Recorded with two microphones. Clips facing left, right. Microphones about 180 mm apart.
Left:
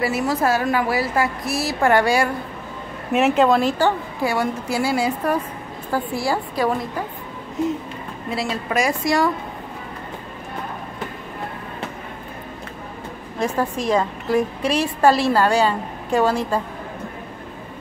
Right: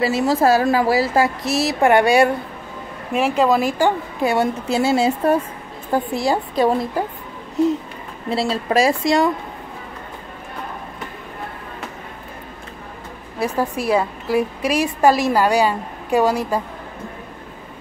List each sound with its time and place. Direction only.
0.0 s a woman's voice: 25° right (ahead or behind)
3.1 s a woman's voice: centre (ahead or behind); by 6.8 s 25° right (ahead or behind)
8.3 s a woman's voice: 30° right (ahead or behind)
13.4 s a woman's voice: 10° right (ahead or behind)